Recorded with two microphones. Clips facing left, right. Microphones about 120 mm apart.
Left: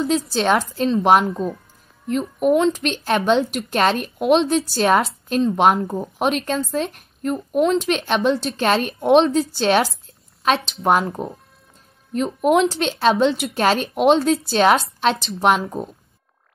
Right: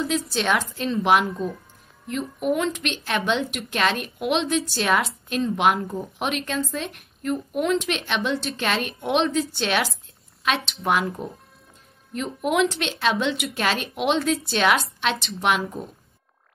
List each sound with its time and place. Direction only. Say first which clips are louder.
0.3 s a woman's voice: left 5 dB; 35° left (ahead or behind)